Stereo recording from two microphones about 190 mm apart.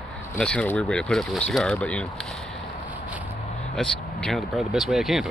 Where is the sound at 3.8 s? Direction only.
Centre (ahead or behind).